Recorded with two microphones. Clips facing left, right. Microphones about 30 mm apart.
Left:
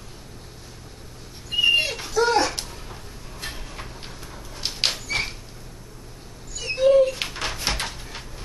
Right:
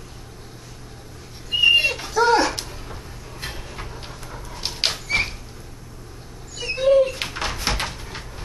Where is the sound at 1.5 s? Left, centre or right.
Centre.